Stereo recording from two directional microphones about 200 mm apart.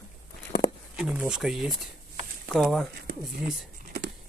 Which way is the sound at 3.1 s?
45° right (ahead or behind).